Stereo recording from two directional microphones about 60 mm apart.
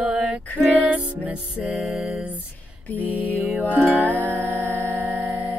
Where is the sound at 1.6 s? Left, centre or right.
Centre.